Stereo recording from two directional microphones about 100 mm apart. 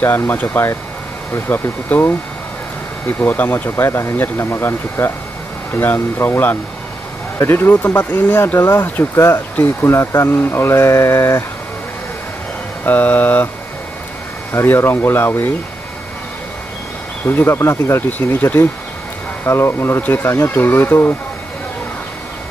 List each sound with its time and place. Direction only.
0.0 s speech: 20° left (ahead or behind)
12.8 s speech: 20° left (ahead or behind)
14.5 s speech: 25° left (ahead or behind)
17.3 s speech: 25° left (ahead or behind)